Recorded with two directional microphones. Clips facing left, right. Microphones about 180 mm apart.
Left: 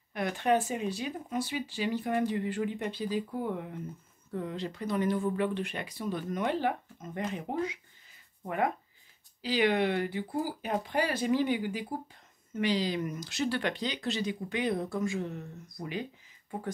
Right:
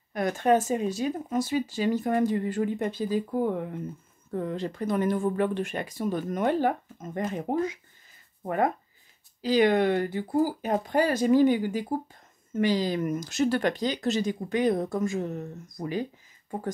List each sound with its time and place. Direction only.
0.1 s speech: 45° right (ahead or behind)